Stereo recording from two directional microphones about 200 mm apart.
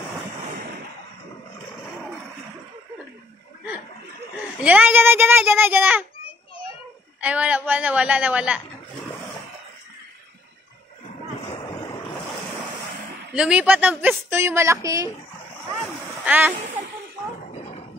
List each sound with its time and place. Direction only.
4.6 s a woman's voice: 10° right (ahead or behind)
7.2 s a woman's voice: 5° right (ahead or behind)
11.5 s waves: 25° left (ahead or behind)
13.3 s a woman's voice: 5° right (ahead or behind)
16.3 s speech: 10° right (ahead or behind)
17.6 s a sound: 30° left (ahead or behind)